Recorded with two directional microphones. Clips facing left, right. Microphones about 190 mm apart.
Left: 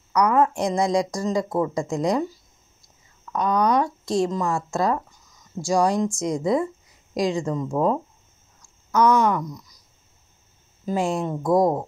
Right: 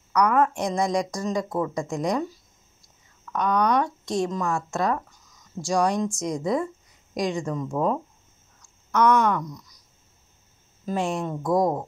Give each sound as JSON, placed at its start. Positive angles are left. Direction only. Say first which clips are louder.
{"t": 0.1, "sound": "speech", "louder": "left 2 dB", "side_deg": 25}
{"t": 3.3, "sound": "speech", "louder": "left 2 dB", "side_deg": 30}
{"t": 9.2, "sound": "speech", "louder": "left 2 dB", "side_deg": 25}
{"t": 11.1, "sound": "speech", "louder": "left 4 dB", "side_deg": 25}